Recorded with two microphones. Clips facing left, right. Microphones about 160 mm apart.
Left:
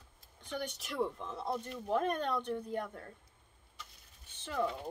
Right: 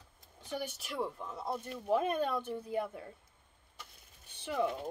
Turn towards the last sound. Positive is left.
turn(degrees=-15)  # may be behind; listen again after turning